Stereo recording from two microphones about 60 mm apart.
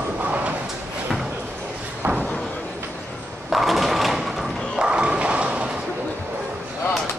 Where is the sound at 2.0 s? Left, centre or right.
Right.